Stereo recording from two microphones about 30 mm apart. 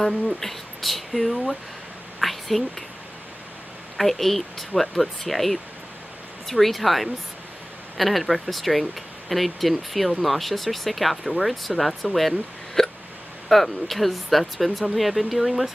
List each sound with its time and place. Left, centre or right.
0.0 s speech: centre
2.1 s whispering: centre
3.9 s speech: centre
12.8 s hiccup: centre
13.5 s speech: centre